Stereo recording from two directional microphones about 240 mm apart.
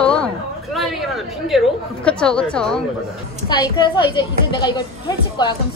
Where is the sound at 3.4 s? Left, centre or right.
Centre.